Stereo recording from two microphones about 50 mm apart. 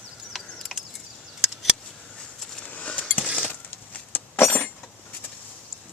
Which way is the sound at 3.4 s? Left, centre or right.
Left.